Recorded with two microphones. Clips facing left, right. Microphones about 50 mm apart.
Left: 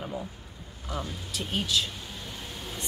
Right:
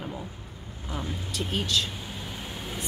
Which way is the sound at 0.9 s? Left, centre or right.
Right.